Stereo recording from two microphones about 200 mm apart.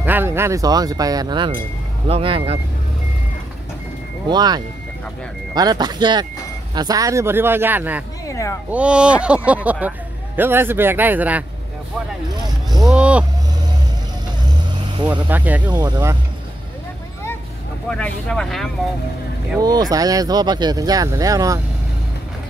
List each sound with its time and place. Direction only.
0.0 s speech: 10° right (ahead or behind); by 2.6 s 30° right (ahead or behind)
4.3 s speech: 20° right (ahead or behind)
8.3 s a sound: 15° left (ahead or behind)
8.7 s speech: 5° right (ahead or behind)
12.7 s speech: 5° right (ahead or behind)
14.4 s vehicle: 20° right (ahead or behind)
15.2 s speech: 10° right (ahead or behind)
15.6 s speech: 20° right (ahead or behind)
17.8 s speech: 5° left (ahead or behind)
19.6 s speech: 20° right (ahead or behind)